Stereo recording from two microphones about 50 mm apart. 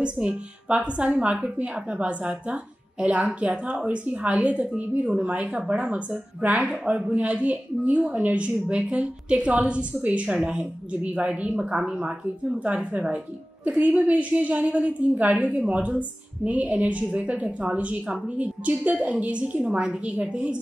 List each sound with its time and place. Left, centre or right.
0.0 s a woman's voice: right
12.5 s a woman's voice: right